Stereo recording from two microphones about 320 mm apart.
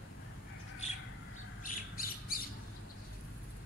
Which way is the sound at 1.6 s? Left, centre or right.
Left.